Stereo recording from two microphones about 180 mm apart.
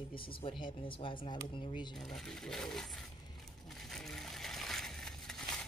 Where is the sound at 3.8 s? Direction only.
Centre (ahead or behind).